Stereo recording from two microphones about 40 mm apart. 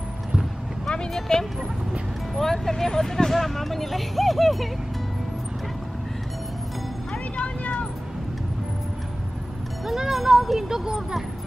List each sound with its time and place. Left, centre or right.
1.3 s speech: centre
7.1 s music: left
9.8 s speech: centre